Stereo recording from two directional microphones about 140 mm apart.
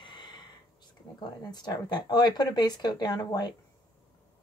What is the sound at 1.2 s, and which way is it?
Speech, 30° left (ahead or behind).